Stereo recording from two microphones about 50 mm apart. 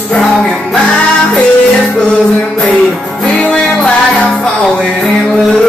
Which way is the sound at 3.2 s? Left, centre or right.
Centre.